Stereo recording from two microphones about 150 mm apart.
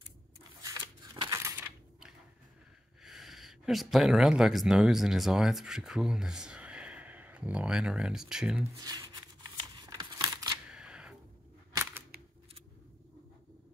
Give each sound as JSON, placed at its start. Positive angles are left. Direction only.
{"t": 0.6, "sound": "scissors", "side_deg": -25}
{"t": 1.4, "sound": "a sound", "side_deg": -20}
{"t": 3.0, "sound": "speech", "side_deg": 0}
{"t": 8.7, "sound": "speech", "side_deg": -25}
{"t": 9.8, "sound": "scissors", "side_deg": -25}
{"t": 10.7, "sound": "camera", "side_deg": -5}
{"t": 11.7, "sound": "a sound", "side_deg": -15}